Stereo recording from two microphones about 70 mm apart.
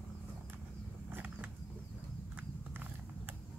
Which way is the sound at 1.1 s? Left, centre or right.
Right.